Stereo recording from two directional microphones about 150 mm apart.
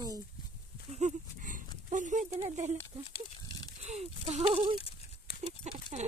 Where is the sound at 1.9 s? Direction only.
55° right (ahead or behind).